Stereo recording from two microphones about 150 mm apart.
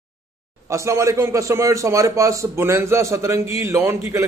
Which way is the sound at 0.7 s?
20° right (ahead or behind).